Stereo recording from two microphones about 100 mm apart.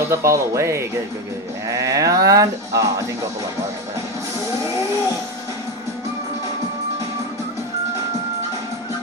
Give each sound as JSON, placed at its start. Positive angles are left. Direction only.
{"t": 0.1, "sound": "speech", "side_deg": -30}